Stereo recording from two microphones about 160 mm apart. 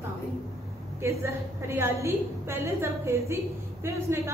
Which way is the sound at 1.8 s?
15° right (ahead or behind).